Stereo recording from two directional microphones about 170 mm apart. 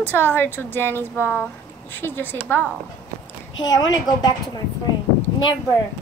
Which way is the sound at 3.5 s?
20° left (ahead or behind).